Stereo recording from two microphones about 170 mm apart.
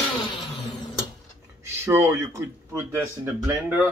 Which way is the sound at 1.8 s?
15° right (ahead or behind).